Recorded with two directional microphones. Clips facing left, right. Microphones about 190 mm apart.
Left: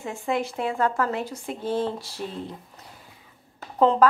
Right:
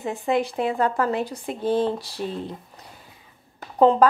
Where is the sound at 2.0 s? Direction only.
35° right (ahead or behind).